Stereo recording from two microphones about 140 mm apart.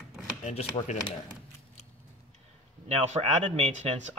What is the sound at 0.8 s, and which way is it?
Speech, 40° left (ahead or behind).